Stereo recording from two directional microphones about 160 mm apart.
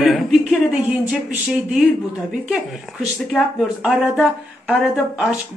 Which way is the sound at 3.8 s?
5° right (ahead or behind).